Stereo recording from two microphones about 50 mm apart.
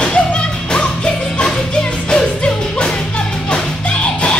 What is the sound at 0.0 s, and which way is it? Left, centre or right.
Music, left.